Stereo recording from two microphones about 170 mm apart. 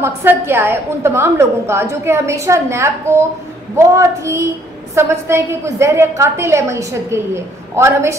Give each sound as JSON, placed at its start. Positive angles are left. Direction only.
{"t": 0.0, "sound": "a woman's voice", "side_deg": -15}